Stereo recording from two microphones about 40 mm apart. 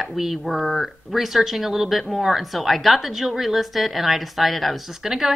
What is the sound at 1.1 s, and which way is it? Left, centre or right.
A woman's voice, centre.